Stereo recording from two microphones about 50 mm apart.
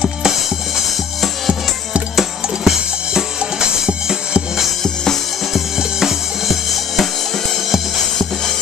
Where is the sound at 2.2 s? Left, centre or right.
Centre.